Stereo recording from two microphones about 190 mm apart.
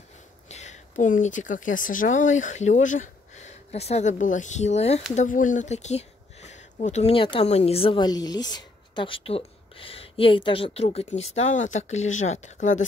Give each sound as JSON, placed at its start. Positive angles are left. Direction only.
{"t": 0.5, "sound": "speech", "side_deg": 35}